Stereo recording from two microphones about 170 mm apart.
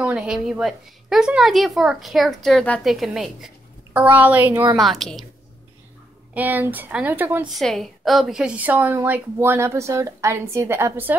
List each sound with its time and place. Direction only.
0.0 s a woman's voice: 5° right (ahead or behind)
4.7 s a woman's voice: centre (ahead or behind)
6.3 s a woman's voice: 10° right (ahead or behind)
7.4 s a woman's voice: centre (ahead or behind)